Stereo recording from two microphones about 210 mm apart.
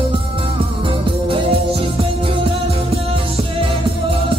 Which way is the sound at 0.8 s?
25° right (ahead or behind).